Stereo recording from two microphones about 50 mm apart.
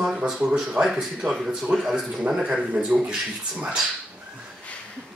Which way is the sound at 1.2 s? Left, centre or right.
Centre.